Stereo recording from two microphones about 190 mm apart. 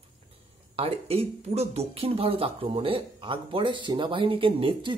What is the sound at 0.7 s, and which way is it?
Speech, 30° right (ahead or behind).